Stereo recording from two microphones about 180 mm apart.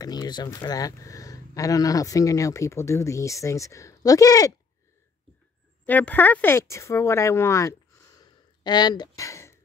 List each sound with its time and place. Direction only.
0.0 s speech: 20° left (ahead or behind)
5.9 s speech: 10° left (ahead or behind)
8.2 s a sound: 25° left (ahead or behind)